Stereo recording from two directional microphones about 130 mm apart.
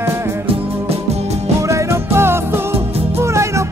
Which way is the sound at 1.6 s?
25° right (ahead or behind).